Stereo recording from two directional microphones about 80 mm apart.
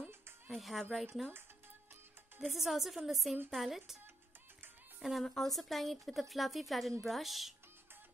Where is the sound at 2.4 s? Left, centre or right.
Centre.